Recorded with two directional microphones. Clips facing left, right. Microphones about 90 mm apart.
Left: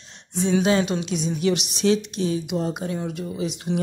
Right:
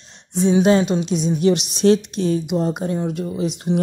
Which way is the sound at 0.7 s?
30° right (ahead or behind).